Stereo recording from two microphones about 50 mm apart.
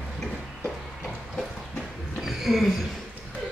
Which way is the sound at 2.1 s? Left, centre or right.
Centre.